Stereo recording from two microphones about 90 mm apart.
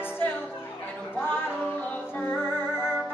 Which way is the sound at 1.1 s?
25° left (ahead or behind).